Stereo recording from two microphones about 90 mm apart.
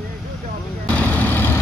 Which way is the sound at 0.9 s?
15° left (ahead or behind).